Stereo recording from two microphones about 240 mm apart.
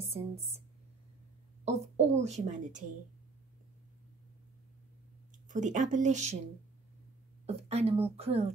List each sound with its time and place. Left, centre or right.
0.0 s a sound: right
1.6 s a woman's voice: right
5.5 s speech: right
7.4 s a woman's voice: right